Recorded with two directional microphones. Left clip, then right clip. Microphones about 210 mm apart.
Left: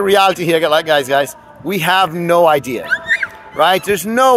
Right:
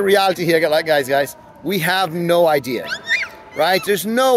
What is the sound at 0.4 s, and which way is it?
Speech, 25° right (ahead or behind).